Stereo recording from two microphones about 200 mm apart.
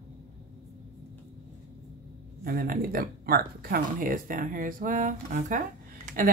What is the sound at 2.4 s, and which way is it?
Speech, 45° right (ahead or behind).